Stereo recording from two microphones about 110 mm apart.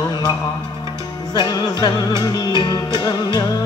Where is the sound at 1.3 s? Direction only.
40° left (ahead or behind).